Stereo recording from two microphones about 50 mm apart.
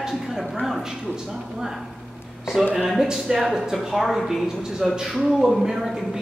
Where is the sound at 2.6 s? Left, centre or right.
Centre.